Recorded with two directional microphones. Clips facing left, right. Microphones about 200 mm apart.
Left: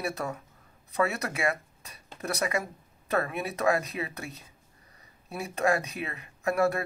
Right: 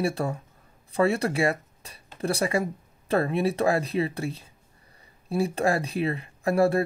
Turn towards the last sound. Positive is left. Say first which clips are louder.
# right 4 dB
turn(degrees=-30)  # may be behind; listen again after turning